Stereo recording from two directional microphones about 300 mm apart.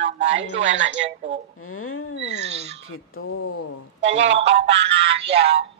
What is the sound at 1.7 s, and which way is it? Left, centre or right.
Speech, left.